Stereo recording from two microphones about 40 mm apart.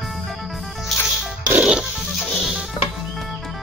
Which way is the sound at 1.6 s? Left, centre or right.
Centre.